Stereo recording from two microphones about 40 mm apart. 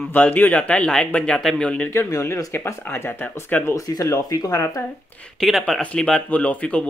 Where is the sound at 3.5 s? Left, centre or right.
Left.